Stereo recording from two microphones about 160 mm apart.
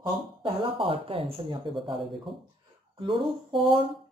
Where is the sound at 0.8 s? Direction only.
35° right (ahead or behind).